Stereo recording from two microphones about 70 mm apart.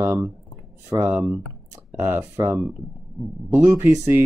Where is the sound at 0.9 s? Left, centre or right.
Right.